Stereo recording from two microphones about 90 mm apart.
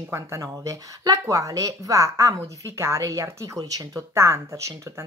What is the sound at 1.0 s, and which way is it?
Speech, 45° right (ahead or behind).